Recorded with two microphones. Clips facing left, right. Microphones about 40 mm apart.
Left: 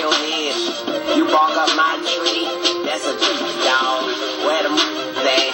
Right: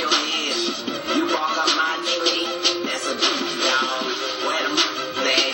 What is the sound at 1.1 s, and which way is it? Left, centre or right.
Music, left.